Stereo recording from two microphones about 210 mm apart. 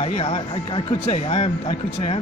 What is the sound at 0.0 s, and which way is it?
Speech, 25° left (ahead or behind).